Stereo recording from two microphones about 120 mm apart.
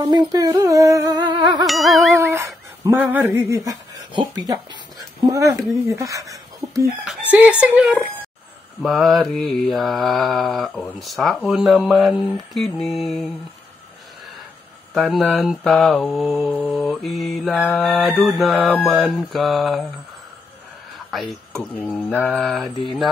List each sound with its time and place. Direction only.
0.0 s music: 30° right (ahead or behind)
1.7 s mantra: centre (ahead or behind)
2.1 s dog: 25° right (ahead or behind)
3.0 s a sound: 15° right (ahead or behind)
4.1 s music: 35° right (ahead or behind)
5.2 s a sound: 30° right (ahead or behind)
7.1 s speech: 15° right (ahead or behind)
8.8 s mantra: centre (ahead or behind)
15.0 s mantra: centre (ahead or behind)
16.3 s speech: 15° right (ahead or behind)
16.9 s mantra: centre (ahead or behind)
21.1 s speech: centre (ahead or behind)
21.7 s mantra: 15° left (ahead or behind)
22.3 s mantra: centre (ahead or behind)